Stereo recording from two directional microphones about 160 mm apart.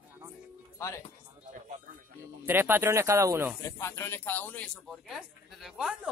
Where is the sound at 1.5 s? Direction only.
55° right (ahead or behind).